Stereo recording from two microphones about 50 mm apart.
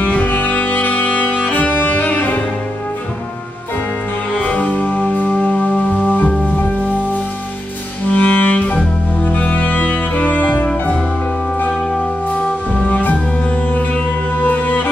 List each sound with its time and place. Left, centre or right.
0.0 s music: left
4.3 s music: left
12.3 s music: left
14.4 s music: left